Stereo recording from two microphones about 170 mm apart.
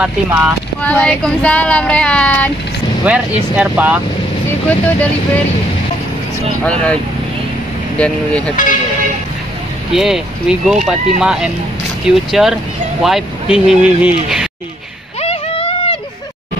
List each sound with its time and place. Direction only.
0.0 s speech: 10° right (ahead or behind)
0.8 s child singing: 5° left (ahead or behind)
3.1 s speech: 10° right (ahead or behind)
4.6 s child singing: 10° left (ahead or behind)
6.6 s child singing: 5° left (ahead or behind)
8.0 s child singing: 5° left (ahead or behind)
9.9 s speech: 5° right (ahead or behind)
15.2 s a sound: 35° left (ahead or behind)